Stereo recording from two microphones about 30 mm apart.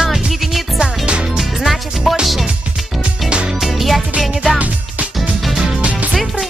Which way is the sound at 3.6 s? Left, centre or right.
Centre.